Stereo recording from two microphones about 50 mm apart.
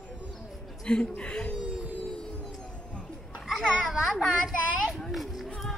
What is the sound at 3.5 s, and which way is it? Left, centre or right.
Children playing, centre.